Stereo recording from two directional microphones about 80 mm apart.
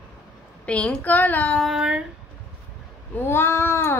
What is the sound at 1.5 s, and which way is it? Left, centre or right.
Speech, centre.